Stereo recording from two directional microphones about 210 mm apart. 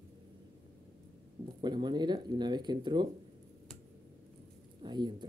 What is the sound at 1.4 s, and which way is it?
Speech, 20° right (ahead or behind).